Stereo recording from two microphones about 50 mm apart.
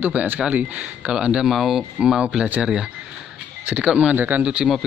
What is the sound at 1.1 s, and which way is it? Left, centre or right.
Speech, centre.